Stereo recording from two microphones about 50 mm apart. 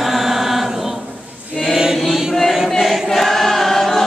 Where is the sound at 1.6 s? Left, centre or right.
Centre.